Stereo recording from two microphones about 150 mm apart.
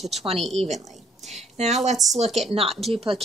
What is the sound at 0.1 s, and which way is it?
Speech, 40° right (ahead or behind).